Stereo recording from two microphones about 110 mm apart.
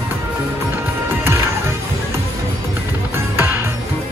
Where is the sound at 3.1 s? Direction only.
20° right (ahead or behind).